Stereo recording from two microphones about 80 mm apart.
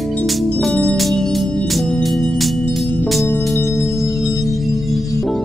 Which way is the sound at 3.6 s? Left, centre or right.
Left.